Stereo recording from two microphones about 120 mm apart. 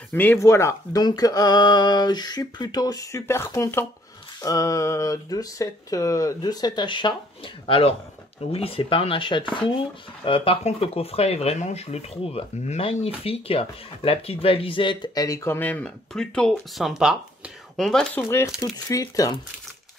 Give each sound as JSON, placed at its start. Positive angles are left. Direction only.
{"t": 0.1, "sound": "speech", "side_deg": 15}
{"t": 1.0, "sound": "a sound", "side_deg": 30}
{"t": 4.4, "sound": "speech", "side_deg": 25}
{"t": 15.2, "sound": "speech", "side_deg": 20}
{"t": 18.1, "sound": "speech", "side_deg": 20}